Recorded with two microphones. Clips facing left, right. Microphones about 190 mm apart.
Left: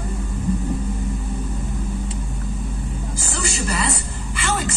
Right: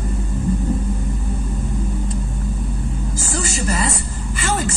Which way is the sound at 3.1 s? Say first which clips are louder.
Right 2 dB; 45° right (ahead or behind).